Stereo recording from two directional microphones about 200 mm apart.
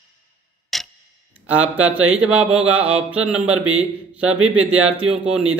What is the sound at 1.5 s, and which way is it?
Speech, 5° right (ahead or behind).